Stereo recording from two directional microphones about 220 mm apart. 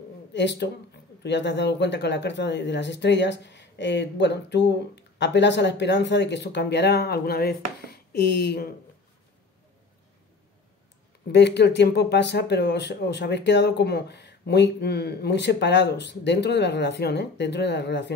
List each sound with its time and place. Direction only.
0.3 s speech: 55° left (ahead or behind)
11.3 s speech: 50° left (ahead or behind)